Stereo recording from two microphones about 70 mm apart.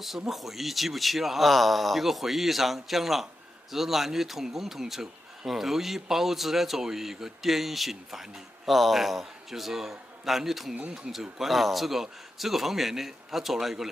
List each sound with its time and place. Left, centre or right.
0.3 s speech: centre